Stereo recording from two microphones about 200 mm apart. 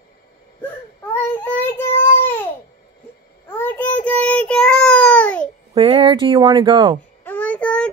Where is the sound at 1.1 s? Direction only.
10° left (ahead or behind).